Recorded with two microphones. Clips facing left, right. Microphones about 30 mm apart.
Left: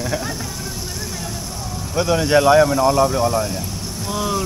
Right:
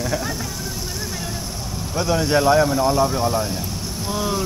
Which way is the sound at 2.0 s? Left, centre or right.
Centre.